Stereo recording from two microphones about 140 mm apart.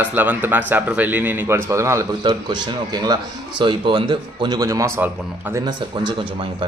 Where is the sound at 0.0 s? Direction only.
10° right (ahead or behind).